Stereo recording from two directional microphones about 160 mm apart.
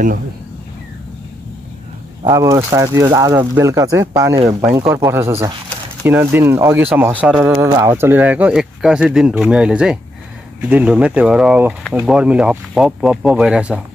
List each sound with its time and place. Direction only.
2.2 s speech: 20° right (ahead or behind)
7.5 s speech: 15° right (ahead or behind)